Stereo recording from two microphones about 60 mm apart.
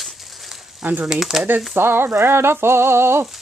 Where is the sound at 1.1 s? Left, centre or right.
Centre.